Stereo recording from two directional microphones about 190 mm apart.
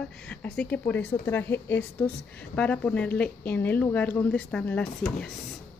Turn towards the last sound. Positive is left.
turn(degrees=5)  # may be behind; listen again after turning